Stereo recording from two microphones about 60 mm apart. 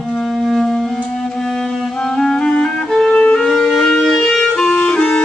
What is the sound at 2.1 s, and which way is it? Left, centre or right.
Clarinet, centre.